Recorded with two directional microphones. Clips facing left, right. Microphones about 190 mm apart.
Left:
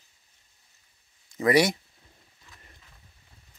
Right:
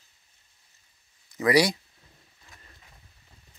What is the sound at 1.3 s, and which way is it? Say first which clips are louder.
Speech: even; 25° left (ahead or behind).